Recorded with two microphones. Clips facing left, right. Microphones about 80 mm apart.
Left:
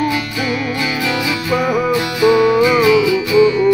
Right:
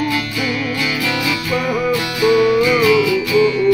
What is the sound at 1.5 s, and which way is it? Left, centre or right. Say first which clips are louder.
Music: left 3 dB; left.